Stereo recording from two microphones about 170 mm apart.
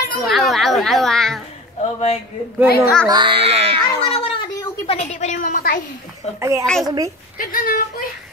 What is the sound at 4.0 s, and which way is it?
Speech, 30° left (ahead or behind).